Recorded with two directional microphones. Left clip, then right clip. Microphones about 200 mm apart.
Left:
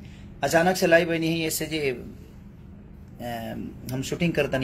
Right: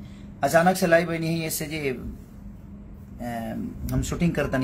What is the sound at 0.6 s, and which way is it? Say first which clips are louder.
Speech: even; centre (ahead or behind).